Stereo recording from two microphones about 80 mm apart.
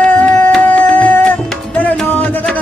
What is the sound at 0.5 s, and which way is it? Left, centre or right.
Music, centre.